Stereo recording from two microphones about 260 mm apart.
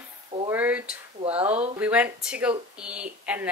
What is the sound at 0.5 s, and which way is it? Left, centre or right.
Speech, centre.